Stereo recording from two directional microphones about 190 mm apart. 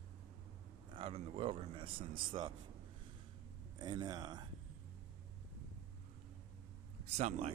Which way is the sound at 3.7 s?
20° right (ahead or behind).